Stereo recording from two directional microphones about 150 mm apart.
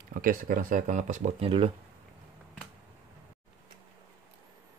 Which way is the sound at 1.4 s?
35° right (ahead or behind).